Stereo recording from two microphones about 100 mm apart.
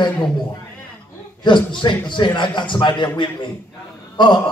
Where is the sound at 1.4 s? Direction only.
50° left (ahead or behind).